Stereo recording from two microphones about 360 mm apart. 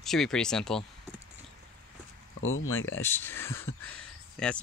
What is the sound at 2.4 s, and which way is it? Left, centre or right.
Speech, left.